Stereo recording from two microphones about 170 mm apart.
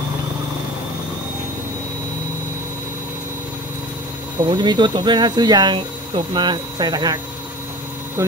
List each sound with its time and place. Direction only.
4.4 s speech: 25° right (ahead or behind)
8.2 s speech: 20° right (ahead or behind)